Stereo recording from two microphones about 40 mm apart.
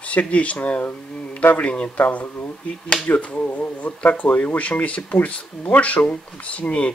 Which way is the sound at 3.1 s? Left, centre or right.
Left.